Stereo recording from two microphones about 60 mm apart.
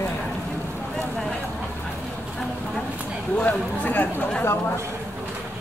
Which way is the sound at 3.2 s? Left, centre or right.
Left.